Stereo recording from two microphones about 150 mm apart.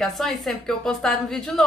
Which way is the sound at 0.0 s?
Centre (ahead or behind).